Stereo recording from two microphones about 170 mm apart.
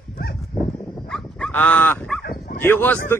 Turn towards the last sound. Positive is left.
turn(degrees=10)  # may be behind; listen again after turning